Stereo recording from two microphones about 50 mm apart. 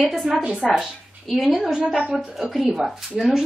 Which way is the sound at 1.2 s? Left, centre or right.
Centre.